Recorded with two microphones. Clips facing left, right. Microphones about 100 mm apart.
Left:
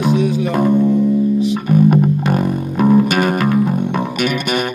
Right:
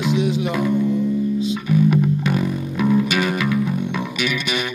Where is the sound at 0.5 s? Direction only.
50° left (ahead or behind).